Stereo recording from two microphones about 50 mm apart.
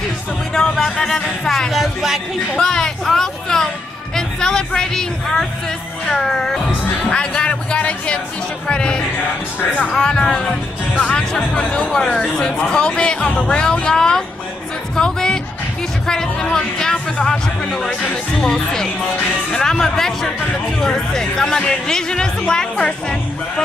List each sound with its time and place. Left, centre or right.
0.6 s speech: centre
1.7 s a woman's voice: centre
2.5 s speech: centre
7.1 s speech: centre